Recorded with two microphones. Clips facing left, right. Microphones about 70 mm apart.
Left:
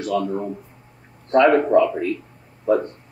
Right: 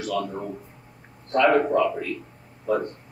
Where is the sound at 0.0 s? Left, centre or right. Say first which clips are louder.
Left 5 dB; left.